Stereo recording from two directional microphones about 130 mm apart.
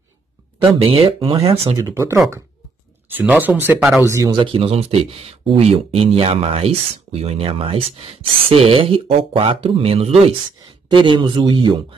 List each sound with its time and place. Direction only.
0.7 s speech: 45° right (ahead or behind)
1.8 s speech: 25° right (ahead or behind)
4.3 s speech: 40° right (ahead or behind)
10.6 s speech: 35° right (ahead or behind)